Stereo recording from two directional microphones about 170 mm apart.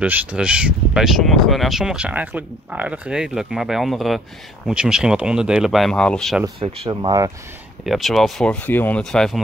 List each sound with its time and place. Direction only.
0.0 s speech: 10° right (ahead or behind)
6.6 s speech: 25° right (ahead or behind)
7.8 s speech: centre (ahead or behind)